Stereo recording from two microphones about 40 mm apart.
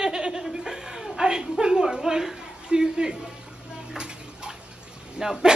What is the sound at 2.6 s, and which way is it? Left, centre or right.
Speech, right.